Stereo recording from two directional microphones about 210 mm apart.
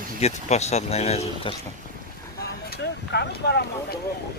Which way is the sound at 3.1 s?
50° left (ahead or behind).